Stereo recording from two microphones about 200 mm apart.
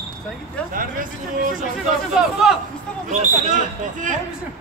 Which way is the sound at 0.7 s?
45° right (ahead or behind).